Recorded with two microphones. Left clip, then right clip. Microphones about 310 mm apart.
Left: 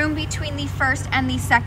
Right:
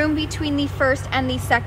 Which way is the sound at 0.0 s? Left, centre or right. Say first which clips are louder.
Right 2 dB; centre.